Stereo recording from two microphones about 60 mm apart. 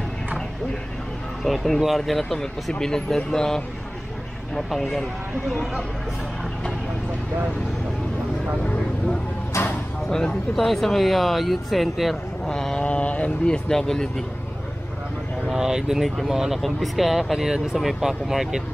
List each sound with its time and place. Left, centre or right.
1.4 s speech: centre
9.5 s a sound: left
10.0 s speech: centre
12.4 s a sound: centre
12.8 s mantra: left
13.7 s speech: centre
15.4 s speech: centre